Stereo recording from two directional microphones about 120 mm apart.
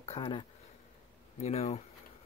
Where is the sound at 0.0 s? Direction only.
65° left (ahead or behind).